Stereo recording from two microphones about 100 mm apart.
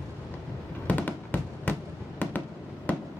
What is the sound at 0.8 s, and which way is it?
Fireworks, 15° left (ahead or behind).